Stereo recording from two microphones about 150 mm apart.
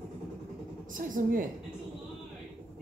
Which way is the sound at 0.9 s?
65° right (ahead or behind).